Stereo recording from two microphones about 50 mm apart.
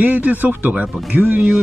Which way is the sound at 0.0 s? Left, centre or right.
Right.